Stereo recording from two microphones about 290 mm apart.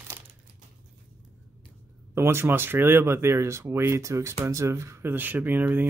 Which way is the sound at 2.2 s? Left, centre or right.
Centre.